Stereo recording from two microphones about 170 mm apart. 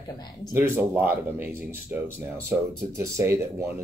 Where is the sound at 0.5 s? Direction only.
15° right (ahead or behind).